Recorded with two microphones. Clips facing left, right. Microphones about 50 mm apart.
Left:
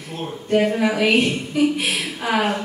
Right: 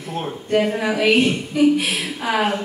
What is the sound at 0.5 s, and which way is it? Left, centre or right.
A man's voice, centre.